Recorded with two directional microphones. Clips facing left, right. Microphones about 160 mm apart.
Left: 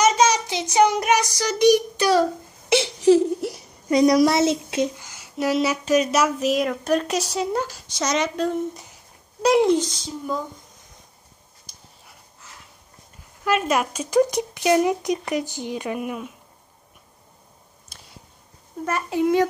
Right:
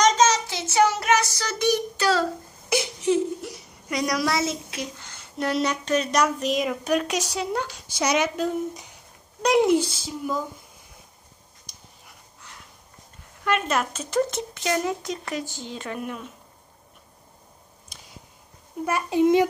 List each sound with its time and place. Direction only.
0.0 s child singing: 10° left (ahead or behind)
2.7 s a sound: 30° left (ahead or behind)
3.9 s speech: 25° left (ahead or behind)
4.9 s speech: 10° left (ahead or behind)
11.7 s a sound: 5° left (ahead or behind)
13.4 s speech: 5° left (ahead or behind)
18.9 s a child's voice: 15° right (ahead or behind)